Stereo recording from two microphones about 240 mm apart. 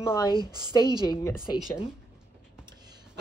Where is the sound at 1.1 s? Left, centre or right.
Centre.